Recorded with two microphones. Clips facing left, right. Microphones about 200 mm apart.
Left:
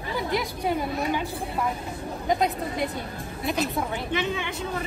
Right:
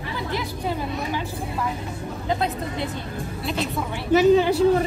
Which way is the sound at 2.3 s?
15° left (ahead or behind).